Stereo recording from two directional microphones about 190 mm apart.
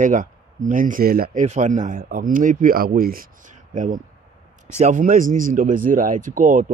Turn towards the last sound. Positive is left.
turn(degrees=-40)  # may be behind; listen again after turning